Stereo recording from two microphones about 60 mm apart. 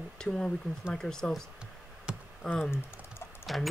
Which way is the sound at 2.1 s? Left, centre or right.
Centre.